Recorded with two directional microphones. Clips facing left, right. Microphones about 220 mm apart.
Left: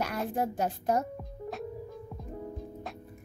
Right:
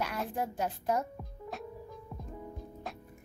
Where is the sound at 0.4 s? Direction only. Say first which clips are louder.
Left 4 dB; 45° left (ahead or behind).